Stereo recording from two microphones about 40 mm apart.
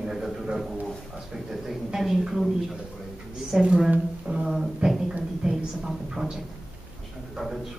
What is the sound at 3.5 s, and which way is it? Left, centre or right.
A man's voice, centre.